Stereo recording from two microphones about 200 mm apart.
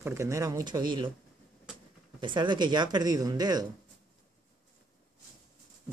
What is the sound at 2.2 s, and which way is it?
Speech, 25° right (ahead or behind).